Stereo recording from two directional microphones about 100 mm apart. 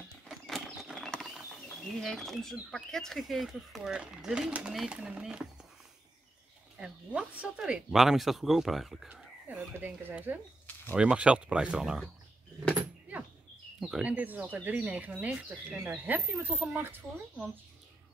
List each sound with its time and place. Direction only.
0.5 s a sound: centre (ahead or behind)
2.7 s speech: 5° left (ahead or behind)
6.8 s speech: 10° right (ahead or behind)
9.1 s whispering: 15° right (ahead or behind)
9.8 s speech: 20° right (ahead or behind)
13.7 s speech: 5° right (ahead or behind)
14.0 s speech: 15° right (ahead or behind)